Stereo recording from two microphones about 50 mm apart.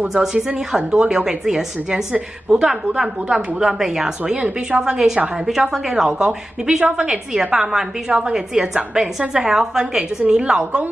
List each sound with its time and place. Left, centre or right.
0.1 s a woman's voice: centre